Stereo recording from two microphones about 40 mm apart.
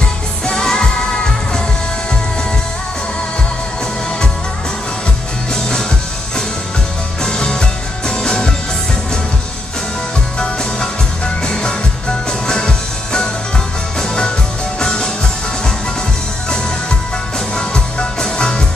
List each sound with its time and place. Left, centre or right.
0.5 s music: centre
5.5 s music: centre
7.2 s music: centre
10.4 s music: centre
17.6 s music: centre